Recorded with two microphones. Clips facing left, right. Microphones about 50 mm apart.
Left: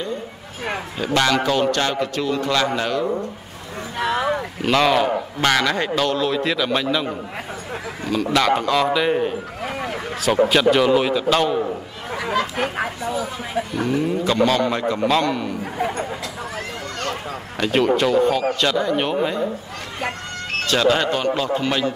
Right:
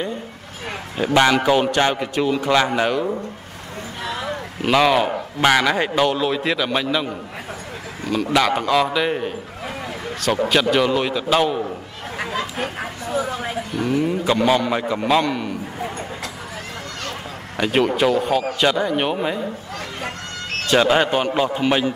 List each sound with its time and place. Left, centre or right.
0.9 s a man's voice: centre
4.0 s a sound: left
4.6 s a man's voice: centre
8.1 s a man's voice: centre
10.5 s a man's voice: centre
12.3 s speech: left
12.6 s speech: left
13.1 s speech: right
14.0 s a man's voice: centre
17.6 s a man's voice: centre
20.6 s a man's voice: centre